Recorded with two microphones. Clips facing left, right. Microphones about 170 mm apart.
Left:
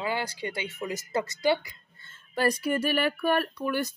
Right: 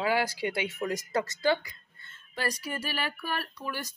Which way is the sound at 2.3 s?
55° left (ahead or behind).